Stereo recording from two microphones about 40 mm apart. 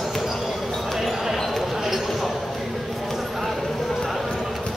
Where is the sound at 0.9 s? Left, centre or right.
Centre.